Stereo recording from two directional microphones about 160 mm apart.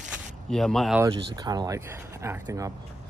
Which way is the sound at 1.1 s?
25° right (ahead or behind).